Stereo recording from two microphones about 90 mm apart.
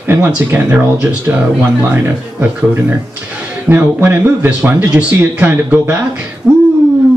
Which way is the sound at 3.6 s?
20° right (ahead or behind).